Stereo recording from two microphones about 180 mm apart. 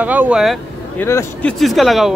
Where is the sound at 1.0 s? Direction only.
15° left (ahead or behind).